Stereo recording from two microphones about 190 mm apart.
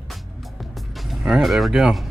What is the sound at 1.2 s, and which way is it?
Speech, centre (ahead or behind).